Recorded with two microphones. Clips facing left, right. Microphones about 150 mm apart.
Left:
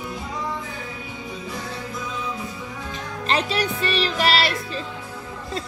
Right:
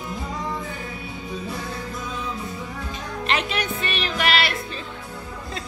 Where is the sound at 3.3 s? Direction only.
35° left (ahead or behind).